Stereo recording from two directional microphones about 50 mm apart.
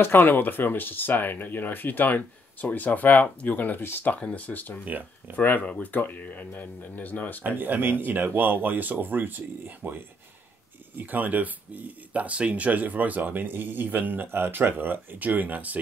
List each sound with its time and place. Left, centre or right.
0.0 s speech: left
7.4 s speech: right